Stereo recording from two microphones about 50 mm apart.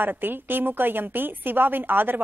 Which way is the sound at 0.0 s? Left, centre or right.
Right.